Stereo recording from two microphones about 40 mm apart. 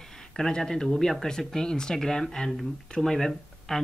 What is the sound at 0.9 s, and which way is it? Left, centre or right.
Speech, centre.